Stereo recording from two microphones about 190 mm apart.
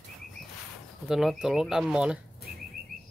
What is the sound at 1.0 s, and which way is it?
Speech, centre (ahead or behind).